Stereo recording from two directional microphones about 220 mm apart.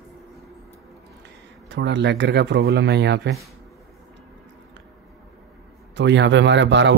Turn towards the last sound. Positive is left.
turn(degrees=-55)  # may be behind; listen again after turning